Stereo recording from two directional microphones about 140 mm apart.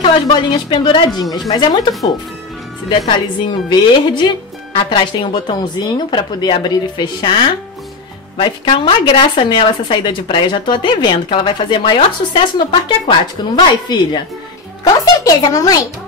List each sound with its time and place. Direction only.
0.0 s a woman's voice: 35° left (ahead or behind)
3.1 s a woman's voice: 35° left (ahead or behind)
15.2 s speech: 25° left (ahead or behind)